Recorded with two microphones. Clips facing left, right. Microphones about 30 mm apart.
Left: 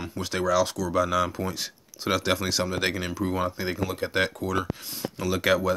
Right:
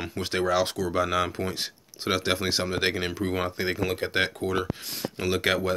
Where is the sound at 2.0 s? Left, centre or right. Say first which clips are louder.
Left 1 dB; centre.